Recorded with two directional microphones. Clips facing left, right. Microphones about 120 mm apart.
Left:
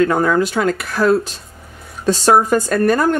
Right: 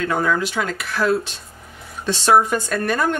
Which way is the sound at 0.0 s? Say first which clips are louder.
Left 6 dB; 45° left (ahead or behind).